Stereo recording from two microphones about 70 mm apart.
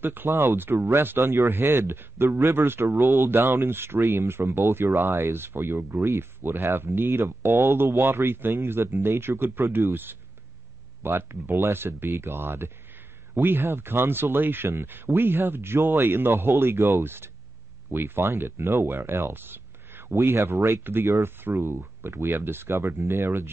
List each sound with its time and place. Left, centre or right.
0.0 s speech: right
0.3 s speech: right
0.6 s speech: right
20.2 s speech: right